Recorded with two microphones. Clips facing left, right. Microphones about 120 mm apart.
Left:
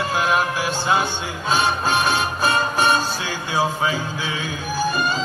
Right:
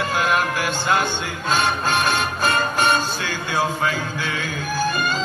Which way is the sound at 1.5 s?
5° left (ahead or behind).